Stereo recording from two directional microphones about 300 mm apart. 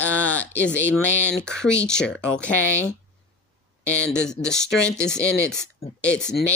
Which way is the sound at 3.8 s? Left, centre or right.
Centre.